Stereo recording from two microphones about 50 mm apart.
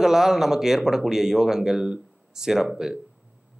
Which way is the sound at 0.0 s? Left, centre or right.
Centre.